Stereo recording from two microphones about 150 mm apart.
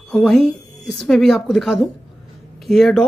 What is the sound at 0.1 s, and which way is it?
A woman's voice, 5° left (ahead or behind).